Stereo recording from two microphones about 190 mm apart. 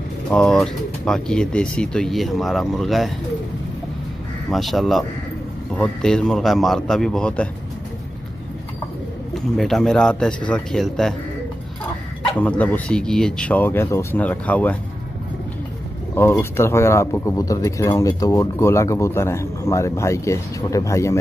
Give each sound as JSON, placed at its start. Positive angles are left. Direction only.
{"t": 0.3, "sound": "speech", "side_deg": 5}
{"t": 4.5, "sound": "speech", "side_deg": 0}
{"t": 9.3, "sound": "speech", "side_deg": 0}
{"t": 12.4, "sound": "speech", "side_deg": 10}
{"t": 16.2, "sound": "speech", "side_deg": 10}